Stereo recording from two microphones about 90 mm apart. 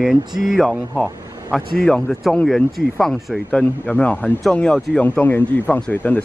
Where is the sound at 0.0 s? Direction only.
5° right (ahead or behind).